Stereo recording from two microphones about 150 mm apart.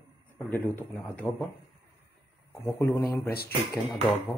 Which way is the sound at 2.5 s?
15° left (ahead or behind).